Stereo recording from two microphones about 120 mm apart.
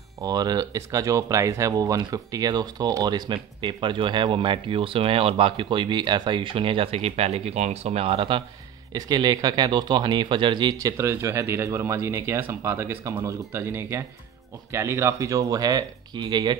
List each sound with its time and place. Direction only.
0.2 s speech: 30° right (ahead or behind)
8.9 s speech: 35° right (ahead or behind)